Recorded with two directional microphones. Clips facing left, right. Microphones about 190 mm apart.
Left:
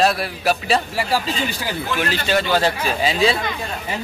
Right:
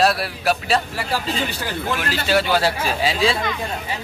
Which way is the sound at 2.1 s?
5° right (ahead or behind).